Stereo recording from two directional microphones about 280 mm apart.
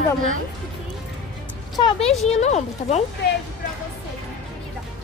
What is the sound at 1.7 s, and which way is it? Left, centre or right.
Speech, centre.